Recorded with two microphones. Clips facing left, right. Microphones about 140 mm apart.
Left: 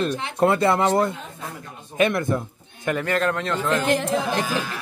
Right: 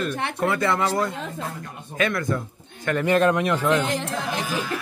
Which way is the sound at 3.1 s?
20° right (ahead or behind).